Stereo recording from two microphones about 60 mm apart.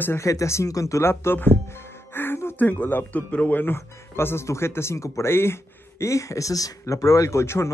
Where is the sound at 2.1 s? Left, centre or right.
Left.